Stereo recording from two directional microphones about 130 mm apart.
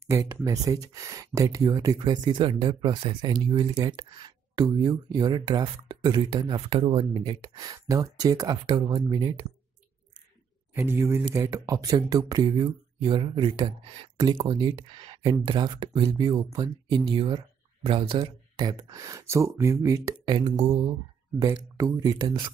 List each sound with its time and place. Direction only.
0.0 s speech: 25° right (ahead or behind); by 7.3 s 40° right (ahead or behind)
7.4 s speech: 30° right (ahead or behind)
10.7 s speech: 15° right (ahead or behind); by 20.9 s 45° right (ahead or behind)
21.4 s speech: 30° right (ahead or behind)